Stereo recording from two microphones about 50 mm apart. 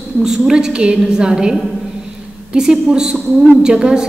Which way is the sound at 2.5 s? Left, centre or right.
Centre.